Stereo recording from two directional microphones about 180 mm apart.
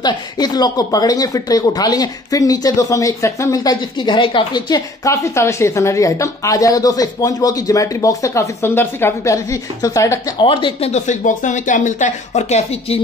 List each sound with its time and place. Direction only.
0.0 s speech: 20° left (ahead or behind)
10.4 s speech: 30° left (ahead or behind)